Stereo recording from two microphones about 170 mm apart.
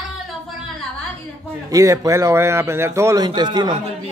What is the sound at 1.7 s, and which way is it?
A woman's voice, 20° right (ahead or behind).